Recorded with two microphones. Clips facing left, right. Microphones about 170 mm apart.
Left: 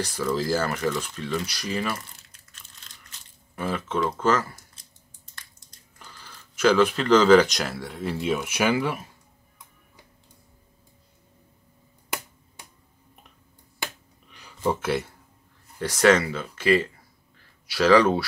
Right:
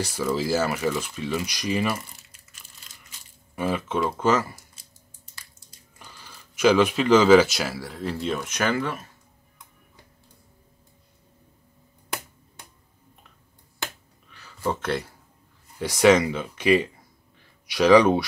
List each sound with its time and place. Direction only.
0.0 s speech: 10° right (ahead or behind); by 9.1 s 10° left (ahead or behind)
14.3 s a sound: 15° left (ahead or behind)
14.8 s speech: 5° left (ahead or behind)
15.8 s speech: 10° right (ahead or behind)